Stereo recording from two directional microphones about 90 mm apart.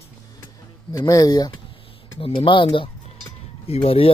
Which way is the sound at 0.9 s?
40° left (ahead or behind).